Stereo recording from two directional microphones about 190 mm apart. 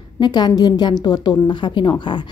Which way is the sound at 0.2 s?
20° left (ahead or behind).